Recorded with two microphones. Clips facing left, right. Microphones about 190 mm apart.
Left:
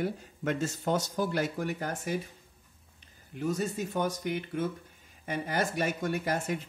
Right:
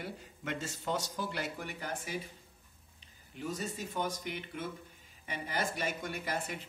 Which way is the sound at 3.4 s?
45° left (ahead or behind).